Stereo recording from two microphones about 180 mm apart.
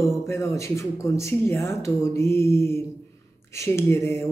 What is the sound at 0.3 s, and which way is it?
Speech, 15° left (ahead or behind).